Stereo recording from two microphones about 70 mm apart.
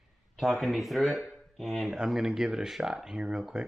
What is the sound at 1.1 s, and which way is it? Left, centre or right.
Speech, left.